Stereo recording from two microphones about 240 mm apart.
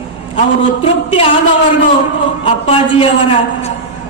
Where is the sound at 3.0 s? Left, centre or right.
Left.